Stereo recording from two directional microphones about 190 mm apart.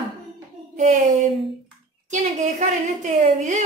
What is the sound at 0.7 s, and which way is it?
Speech, 40° right (ahead or behind).